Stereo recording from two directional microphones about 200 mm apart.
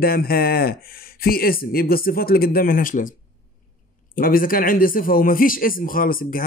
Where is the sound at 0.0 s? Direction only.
50° left (ahead or behind).